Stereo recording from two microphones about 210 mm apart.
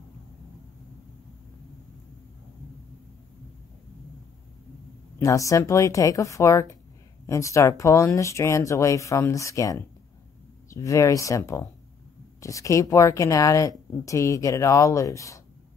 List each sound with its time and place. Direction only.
5.2 s speech: 15° left (ahead or behind)